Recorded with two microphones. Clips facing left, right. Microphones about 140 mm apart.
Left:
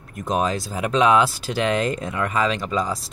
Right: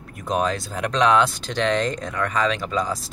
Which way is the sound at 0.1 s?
Centre (ahead or behind).